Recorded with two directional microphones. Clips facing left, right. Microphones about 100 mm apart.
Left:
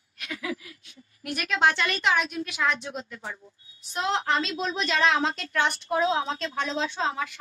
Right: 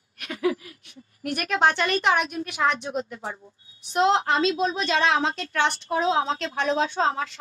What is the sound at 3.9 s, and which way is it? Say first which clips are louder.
A woman's voice: right 5 dB; 30° right (ahead or behind).